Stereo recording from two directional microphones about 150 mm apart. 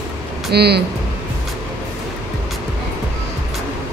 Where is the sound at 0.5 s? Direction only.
90° right.